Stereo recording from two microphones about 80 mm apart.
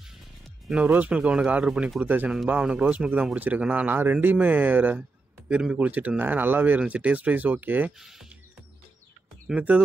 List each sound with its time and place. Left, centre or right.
0.7 s speech: centre
8.0 s speech: centre
9.6 s speech: centre